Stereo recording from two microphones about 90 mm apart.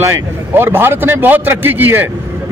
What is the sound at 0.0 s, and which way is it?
A man's voice, 25° right (ahead or behind).